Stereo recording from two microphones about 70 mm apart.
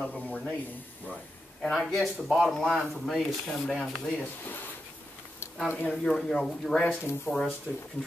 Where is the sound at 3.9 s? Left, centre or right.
Centre.